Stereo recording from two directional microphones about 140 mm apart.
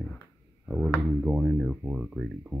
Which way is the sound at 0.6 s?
5° right (ahead or behind).